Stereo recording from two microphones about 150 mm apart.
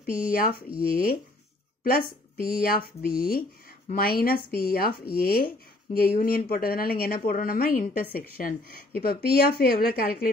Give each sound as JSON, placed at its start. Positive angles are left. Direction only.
{"t": 0.0, "sound": "speech", "side_deg": 75}
{"t": 2.4, "sound": "a woman's voice", "side_deg": 75}
{"t": 5.9, "sound": "a woman's voice", "side_deg": 80}